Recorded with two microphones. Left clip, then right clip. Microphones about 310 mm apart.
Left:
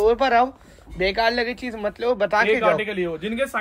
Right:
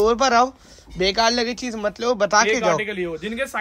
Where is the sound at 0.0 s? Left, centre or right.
Right.